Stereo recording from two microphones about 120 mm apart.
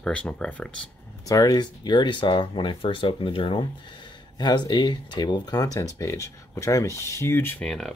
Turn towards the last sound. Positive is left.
turn(degrees=0)  # may be behind; listen again after turning